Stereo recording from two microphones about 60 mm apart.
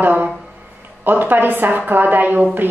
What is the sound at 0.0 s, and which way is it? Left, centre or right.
A woman's voice, right.